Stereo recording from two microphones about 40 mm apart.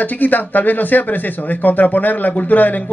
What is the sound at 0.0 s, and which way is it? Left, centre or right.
Speech, left.